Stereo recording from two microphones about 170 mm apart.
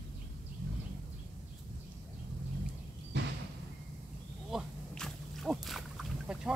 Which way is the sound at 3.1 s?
90° right.